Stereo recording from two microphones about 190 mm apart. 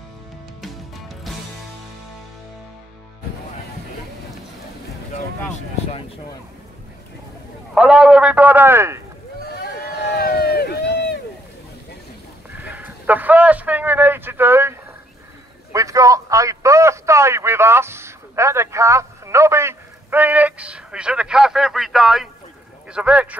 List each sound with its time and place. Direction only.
0.6 s music: centre (ahead or behind)
7.7 s a man's voice: 5° right (ahead or behind)
9.5 s run: 55° left (ahead or behind)
12.6 s a man's voice: 10° right (ahead or behind)